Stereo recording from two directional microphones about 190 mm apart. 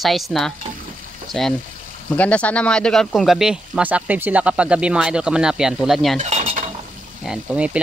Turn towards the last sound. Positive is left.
turn(degrees=-5)  # may be behind; listen again after turning